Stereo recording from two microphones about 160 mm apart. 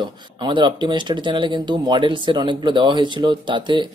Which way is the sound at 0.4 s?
30° right (ahead or behind).